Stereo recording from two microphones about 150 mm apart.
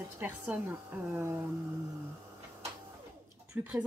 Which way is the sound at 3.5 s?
10° right (ahead or behind).